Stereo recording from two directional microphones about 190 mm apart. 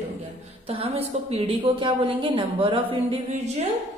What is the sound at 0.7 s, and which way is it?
A woman's voice, 30° right (ahead or behind).